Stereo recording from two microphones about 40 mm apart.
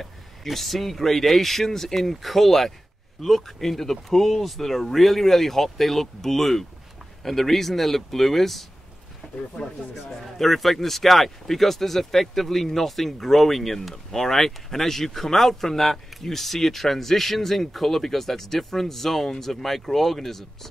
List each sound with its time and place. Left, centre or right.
0.0 s speech: centre
9.2 s a sound: centre
9.9 s speech: centre